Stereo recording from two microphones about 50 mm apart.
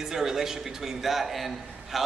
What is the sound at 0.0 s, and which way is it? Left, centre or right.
A man's voice, centre.